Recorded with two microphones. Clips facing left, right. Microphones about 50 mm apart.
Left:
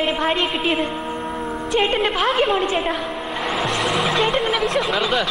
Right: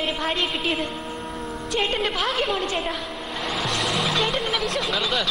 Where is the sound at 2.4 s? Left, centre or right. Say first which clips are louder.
Left 6 dB; left.